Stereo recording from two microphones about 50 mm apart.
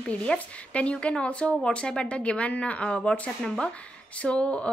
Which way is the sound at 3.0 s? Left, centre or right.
Centre.